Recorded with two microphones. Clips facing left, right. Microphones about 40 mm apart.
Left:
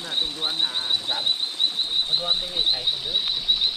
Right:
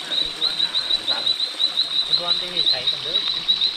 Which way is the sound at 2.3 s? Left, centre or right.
Right.